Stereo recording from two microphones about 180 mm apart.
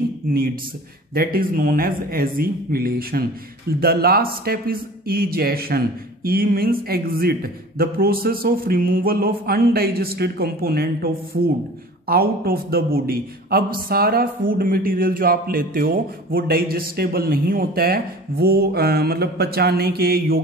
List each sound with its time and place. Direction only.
0.2 s a man's voice: 50° right (ahead or behind)